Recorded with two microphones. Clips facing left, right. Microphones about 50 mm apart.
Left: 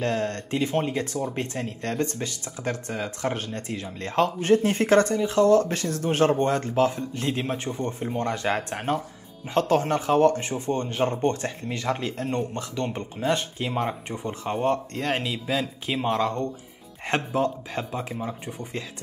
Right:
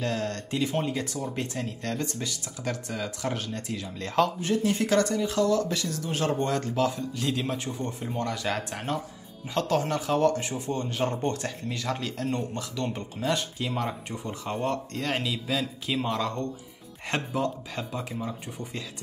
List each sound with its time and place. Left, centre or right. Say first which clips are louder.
0.0 s speech: left 4 dB; left
4.4 s speech: left 5 dB; left
6.3 s speech: left 4 dB; left